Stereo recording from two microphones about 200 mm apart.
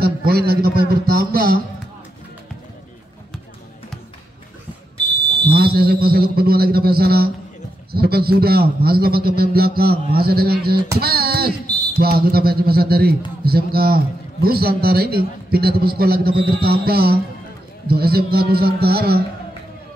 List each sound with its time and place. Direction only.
0.0 s a man's voice: 50° right (ahead or behind)
5.5 s a man's voice: 50° right (ahead or behind)